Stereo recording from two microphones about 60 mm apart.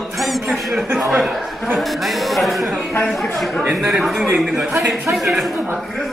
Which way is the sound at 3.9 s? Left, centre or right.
Centre.